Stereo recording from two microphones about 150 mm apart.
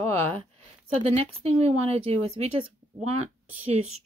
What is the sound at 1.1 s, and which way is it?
Speech, 45° right (ahead or behind).